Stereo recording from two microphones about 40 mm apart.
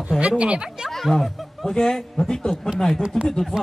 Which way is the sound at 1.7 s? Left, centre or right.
Centre.